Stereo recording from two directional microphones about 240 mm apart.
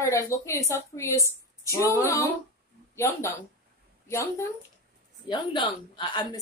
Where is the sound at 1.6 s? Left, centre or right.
Centre.